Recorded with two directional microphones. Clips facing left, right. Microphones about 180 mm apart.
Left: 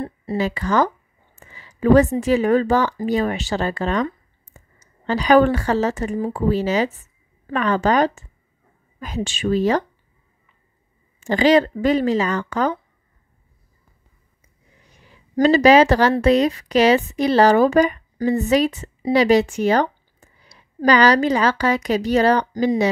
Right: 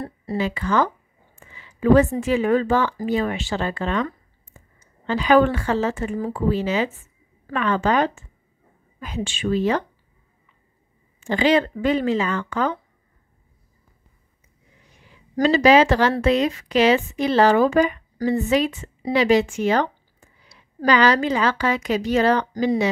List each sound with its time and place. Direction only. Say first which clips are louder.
0.0 s a sound: left 2 dB; 20° left (ahead or behind)
0.4 s a woman's voice: left 2 dB; 40° left (ahead or behind)
1.3 s a sound: left 2 dB; 40° left (ahead or behind)
2.1 s a woman's voice: left 3 dB; 40° left (ahead or behind)
11.1 s a woman's voice: left 3 dB; 40° left (ahead or behind)
15.4 s a woman's voice: left 2 dB; 40° left (ahead or behind)